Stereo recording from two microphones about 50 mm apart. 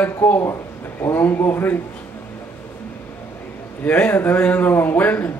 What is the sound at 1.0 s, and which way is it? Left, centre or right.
Speech, left.